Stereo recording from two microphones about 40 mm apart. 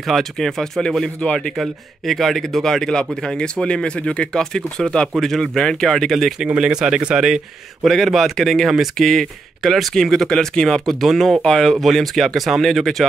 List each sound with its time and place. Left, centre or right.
0.0 s speech: centre
1.2 s speech: left
1.6 s speech: centre; by 4.4 s left
4.4 s speech: centre
5.2 s speech: centre
6.6 s speech: centre
7.8 s speech: centre
9.6 s speech: centre
11.4 s speech: centre
11.8 s speech: centre